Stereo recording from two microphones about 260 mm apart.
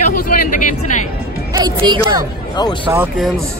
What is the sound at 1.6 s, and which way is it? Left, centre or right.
Speech, centre.